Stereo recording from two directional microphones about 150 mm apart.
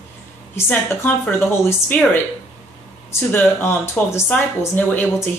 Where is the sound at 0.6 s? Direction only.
10° left (ahead or behind).